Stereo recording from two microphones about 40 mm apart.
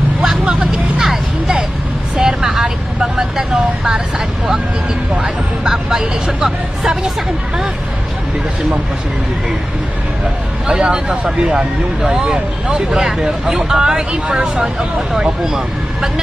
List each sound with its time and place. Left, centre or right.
0.2 s vehicle: centre
5.1 s music: centre
6.8 s speech: centre
10.7 s speech: centre